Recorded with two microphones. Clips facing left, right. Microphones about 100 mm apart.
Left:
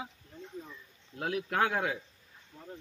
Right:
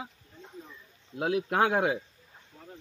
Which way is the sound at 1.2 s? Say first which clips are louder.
Right 4 dB; 20° right (ahead or behind).